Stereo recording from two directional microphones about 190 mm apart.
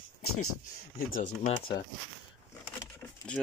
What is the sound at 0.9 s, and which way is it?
Speech, 45° left (ahead or behind).